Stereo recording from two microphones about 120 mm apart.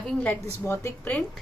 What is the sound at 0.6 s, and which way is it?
Speech, 20° left (ahead or behind).